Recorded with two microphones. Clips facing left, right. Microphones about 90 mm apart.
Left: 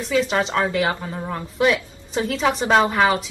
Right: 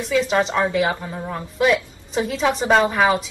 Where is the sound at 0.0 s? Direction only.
Centre (ahead or behind).